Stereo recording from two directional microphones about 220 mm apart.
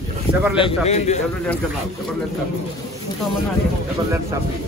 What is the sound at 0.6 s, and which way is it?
Speech, 25° left (ahead or behind).